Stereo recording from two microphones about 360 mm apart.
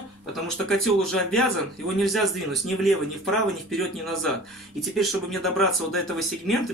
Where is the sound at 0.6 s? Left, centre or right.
Centre.